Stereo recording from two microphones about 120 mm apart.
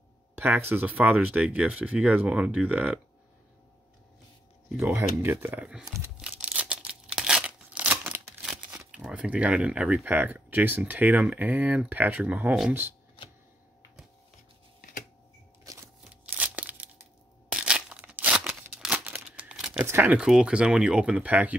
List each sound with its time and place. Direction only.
0.4 s speech: 20° right (ahead or behind)
4.8 s speech: 20° right (ahead or behind)
6.1 s tearing: 10° right (ahead or behind)
8.9 s speech: 5° right (ahead or behind)
15.6 s a sound: 25° right (ahead or behind)
16.0 s crumpling: 10° right (ahead or behind)
17.5 s a sound: 5° right (ahead or behind)
19.1 s crumpling: 5° right (ahead or behind)
19.8 s speech: 15° right (ahead or behind)